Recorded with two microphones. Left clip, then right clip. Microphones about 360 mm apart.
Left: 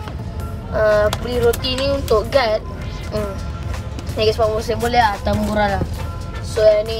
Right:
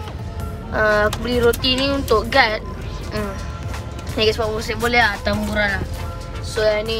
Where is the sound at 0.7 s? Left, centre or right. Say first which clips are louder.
Left 2 dB; centre.